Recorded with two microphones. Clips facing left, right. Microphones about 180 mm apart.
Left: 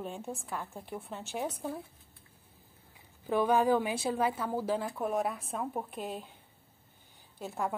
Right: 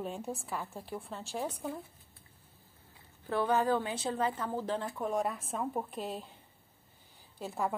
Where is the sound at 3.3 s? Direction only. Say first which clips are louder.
Left 3 dB; 15° left (ahead or behind).